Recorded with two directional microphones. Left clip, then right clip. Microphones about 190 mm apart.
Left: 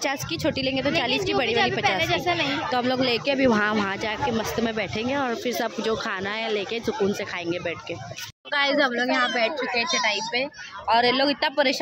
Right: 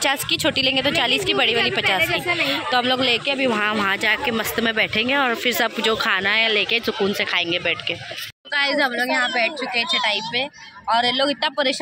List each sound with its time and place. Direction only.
0.0 s a woman's voice: 5° left (ahead or behind)
2.0 s a woman's voice: 45° left (ahead or behind)
2.4 s a woman's voice: 10° left (ahead or behind)
3.3 s speech: 25° left (ahead or behind)
3.7 s speech: centre (ahead or behind)
8.5 s a woman's voice: 10° left (ahead or behind)